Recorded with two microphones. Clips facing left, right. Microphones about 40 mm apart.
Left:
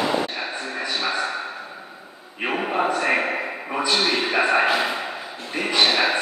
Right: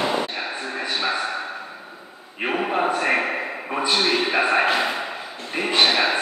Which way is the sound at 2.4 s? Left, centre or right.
Centre.